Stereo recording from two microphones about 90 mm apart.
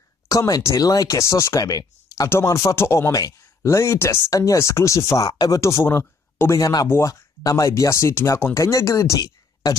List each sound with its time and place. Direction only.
0.3 s speech: 35° left (ahead or behind)
2.2 s speech: 30° left (ahead or behind)
6.6 s speech: 45° left (ahead or behind)
6.9 s speech: 35° left (ahead or behind)
8.5 s speech: 40° left (ahead or behind)